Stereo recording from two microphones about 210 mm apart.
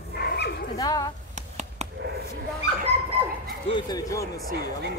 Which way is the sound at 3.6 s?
20° left (ahead or behind).